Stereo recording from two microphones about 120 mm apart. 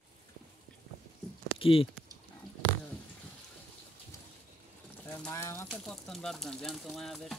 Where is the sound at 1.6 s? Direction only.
50° left (ahead or behind).